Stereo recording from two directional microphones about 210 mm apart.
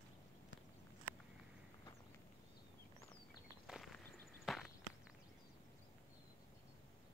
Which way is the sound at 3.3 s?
Centre (ahead or behind).